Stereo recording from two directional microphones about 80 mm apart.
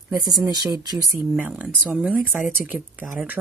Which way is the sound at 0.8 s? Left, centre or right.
Right.